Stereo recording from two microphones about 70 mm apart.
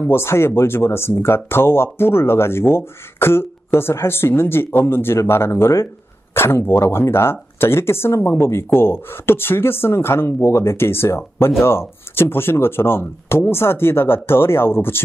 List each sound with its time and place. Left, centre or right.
0.0 s speech: left